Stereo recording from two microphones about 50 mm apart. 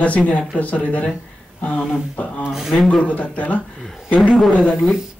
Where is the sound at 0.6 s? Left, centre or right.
Left.